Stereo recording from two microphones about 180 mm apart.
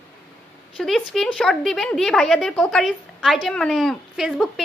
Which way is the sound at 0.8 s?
Centre (ahead or behind).